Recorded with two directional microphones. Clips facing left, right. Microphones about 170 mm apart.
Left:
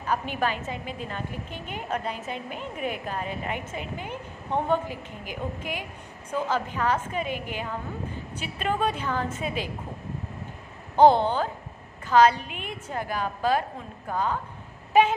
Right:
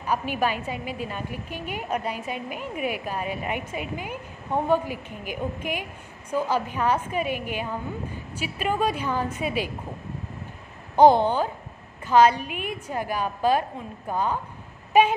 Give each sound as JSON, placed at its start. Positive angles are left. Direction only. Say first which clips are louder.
{"t": 0.0, "sound": "a woman's voice", "louder": "right 2 dB", "side_deg": -10}
{"t": 11.0, "sound": "a woman's voice", "louder": "right 2 dB", "side_deg": -15}
{"t": 14.9, "sound": "a sound", "louder": "right 1 dB", "side_deg": -15}